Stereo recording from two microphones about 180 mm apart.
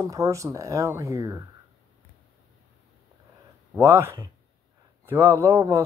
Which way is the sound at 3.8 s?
15° right (ahead or behind).